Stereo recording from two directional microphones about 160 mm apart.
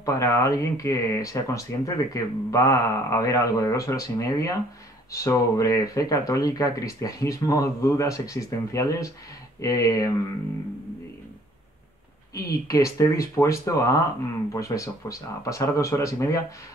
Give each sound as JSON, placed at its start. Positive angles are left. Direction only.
{"t": 0.0, "sound": "speech", "side_deg": 20}
{"t": 12.4, "sound": "speech", "side_deg": 20}